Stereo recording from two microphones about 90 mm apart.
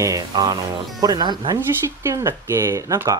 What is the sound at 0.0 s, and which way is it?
Speech, 40° right (ahead or behind).